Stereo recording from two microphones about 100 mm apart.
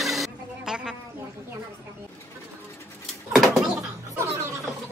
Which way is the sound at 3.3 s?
Centre (ahead or behind).